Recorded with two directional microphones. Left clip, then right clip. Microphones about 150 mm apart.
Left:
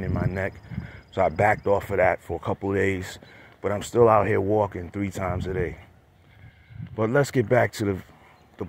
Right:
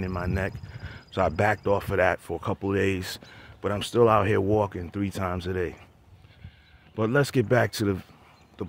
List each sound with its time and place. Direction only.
0.0 s speech: 40° right (ahead or behind)
7.0 s speech: 20° right (ahead or behind)